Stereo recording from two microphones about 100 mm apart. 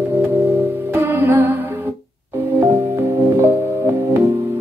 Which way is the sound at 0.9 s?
25° right (ahead or behind).